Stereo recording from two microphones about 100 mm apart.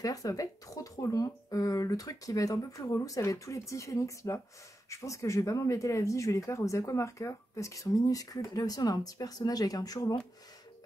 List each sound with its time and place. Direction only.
0.0 s speech: 35° left (ahead or behind)